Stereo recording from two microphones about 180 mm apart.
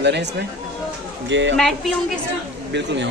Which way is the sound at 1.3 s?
90° right.